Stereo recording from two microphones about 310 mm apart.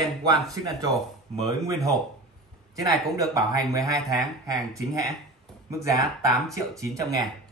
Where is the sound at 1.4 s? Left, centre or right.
Centre.